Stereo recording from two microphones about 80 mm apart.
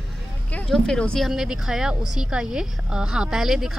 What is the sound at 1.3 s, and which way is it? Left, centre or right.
A woman's voice, centre.